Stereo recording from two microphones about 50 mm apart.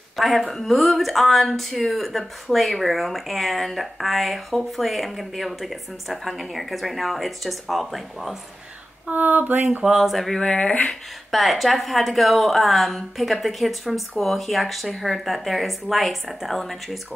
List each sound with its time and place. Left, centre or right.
0.1 s speech: centre
9.0 s a sound: right
9.8 s speech: centre
10.6 s speech: left
11.3 s speech: centre